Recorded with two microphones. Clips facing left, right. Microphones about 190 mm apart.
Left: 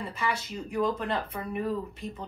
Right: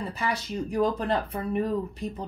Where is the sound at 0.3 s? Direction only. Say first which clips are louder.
Right 3 dB; 35° right (ahead or behind).